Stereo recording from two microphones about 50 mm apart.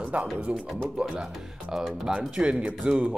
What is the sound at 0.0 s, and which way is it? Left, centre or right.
Music, right.